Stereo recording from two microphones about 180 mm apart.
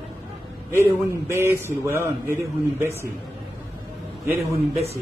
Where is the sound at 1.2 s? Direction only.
15° right (ahead or behind).